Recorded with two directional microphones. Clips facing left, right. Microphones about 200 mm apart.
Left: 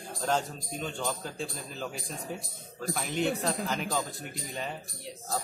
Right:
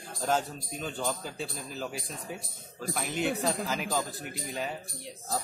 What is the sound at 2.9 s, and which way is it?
Speech, centre (ahead or behind).